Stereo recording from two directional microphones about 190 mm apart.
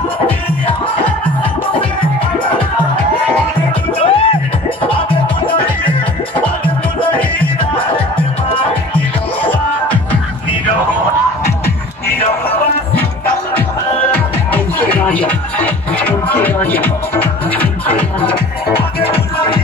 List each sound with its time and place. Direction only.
4.0 s music: 30° left (ahead or behind)
9.4 s music: 10° left (ahead or behind)
14.5 s music: 10° left (ahead or behind)
18.9 s music: 30° left (ahead or behind)